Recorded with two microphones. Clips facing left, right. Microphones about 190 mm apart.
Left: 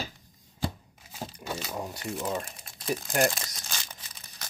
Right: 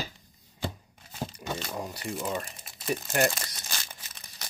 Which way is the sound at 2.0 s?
Centre (ahead or behind).